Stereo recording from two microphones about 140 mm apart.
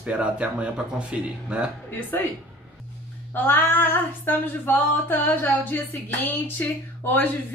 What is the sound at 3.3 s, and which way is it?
Female singing, 15° left (ahead or behind).